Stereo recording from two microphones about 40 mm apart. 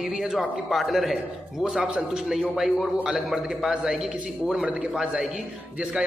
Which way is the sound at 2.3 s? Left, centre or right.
Centre.